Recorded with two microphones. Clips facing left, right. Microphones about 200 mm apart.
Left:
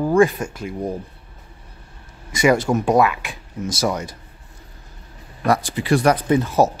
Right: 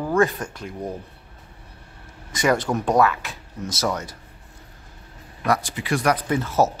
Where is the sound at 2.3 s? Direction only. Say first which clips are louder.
Left 4 dB; 10° left (ahead or behind).